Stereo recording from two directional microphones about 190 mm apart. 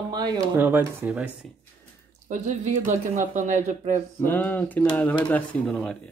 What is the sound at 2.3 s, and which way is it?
Speech, 40° right (ahead or behind).